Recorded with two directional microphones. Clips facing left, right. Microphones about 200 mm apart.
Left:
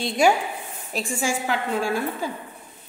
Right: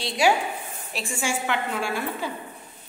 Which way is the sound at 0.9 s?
40° left (ahead or behind).